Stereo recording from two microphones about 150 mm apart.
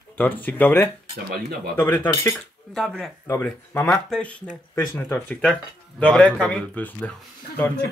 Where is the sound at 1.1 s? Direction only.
90° right.